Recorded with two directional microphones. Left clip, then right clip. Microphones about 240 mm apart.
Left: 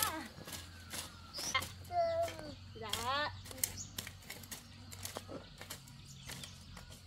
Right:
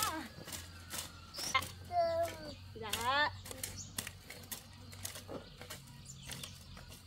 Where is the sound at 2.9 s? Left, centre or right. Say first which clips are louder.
Right 4 dB; right.